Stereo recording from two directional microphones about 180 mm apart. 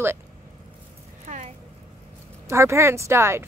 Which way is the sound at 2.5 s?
15° right (ahead or behind).